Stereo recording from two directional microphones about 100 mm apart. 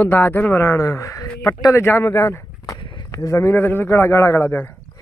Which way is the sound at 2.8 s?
50° left (ahead or behind).